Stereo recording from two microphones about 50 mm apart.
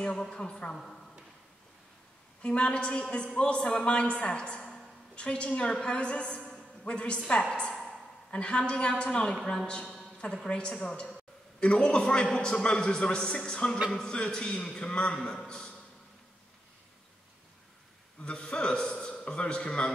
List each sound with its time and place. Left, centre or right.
0.0 s a woman's voice: centre
2.4 s a man's voice: left
18.2 s a man's voice: centre